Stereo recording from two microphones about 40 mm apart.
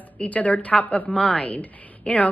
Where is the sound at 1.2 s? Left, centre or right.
Left.